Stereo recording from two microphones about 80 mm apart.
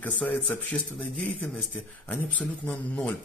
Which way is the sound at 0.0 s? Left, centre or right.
Centre.